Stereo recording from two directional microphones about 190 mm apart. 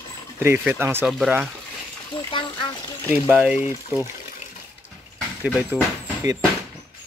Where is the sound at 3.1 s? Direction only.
5° right (ahead or behind).